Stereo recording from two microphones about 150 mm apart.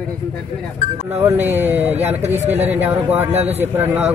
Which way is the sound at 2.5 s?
10° right (ahead or behind).